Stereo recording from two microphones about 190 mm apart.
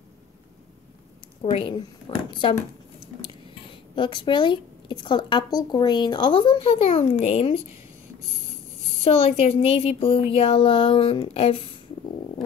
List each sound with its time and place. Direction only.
1.4 s a woman's voice: 30° left (ahead or behind)
3.9 s a woman's voice: 25° left (ahead or behind)
9.0 s a woman's voice: 30° left (ahead or behind)